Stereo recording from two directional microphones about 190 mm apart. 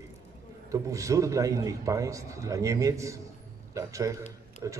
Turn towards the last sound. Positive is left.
turn(degrees=-20)  # may be behind; listen again after turning